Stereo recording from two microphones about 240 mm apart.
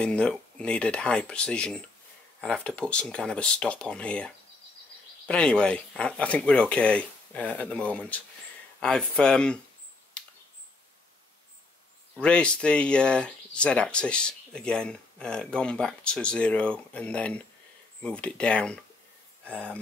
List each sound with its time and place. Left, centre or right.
0.0 s speech: centre
12.2 s speech: centre